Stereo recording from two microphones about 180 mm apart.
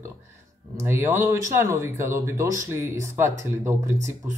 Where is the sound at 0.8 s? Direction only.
15° right (ahead or behind).